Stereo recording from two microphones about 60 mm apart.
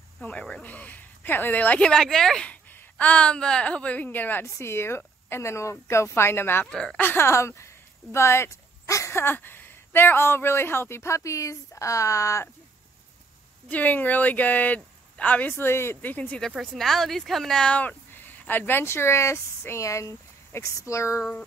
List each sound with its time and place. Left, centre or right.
0.2 s speech: centre
1.9 s speech: centre
3.0 s speech: left
4.5 s speech: left
6.7 s speech: centre
7.0 s speech: left
7.2 s dog: left
9.1 s speech: left
13.7 s speech: left
15.5 s speech: left
16.1 s speech: left
16.6 s speech: centre
17.7 s speech: left
19.8 s speech: left